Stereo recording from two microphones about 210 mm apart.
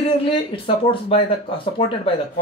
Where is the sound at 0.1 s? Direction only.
25° left (ahead or behind).